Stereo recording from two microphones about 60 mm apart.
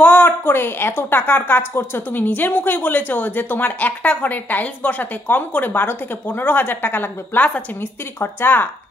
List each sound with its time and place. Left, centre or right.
0.0 s a woman's voice: left
8.2 s a woman's voice: left